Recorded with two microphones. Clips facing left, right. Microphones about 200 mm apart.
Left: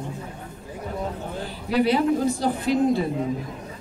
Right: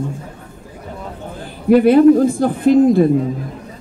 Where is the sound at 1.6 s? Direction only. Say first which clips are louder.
Right 12 dB; 50° right (ahead or behind).